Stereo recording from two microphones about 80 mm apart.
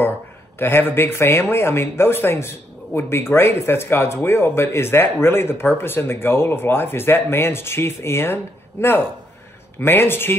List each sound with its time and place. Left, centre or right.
0.6 s speech: left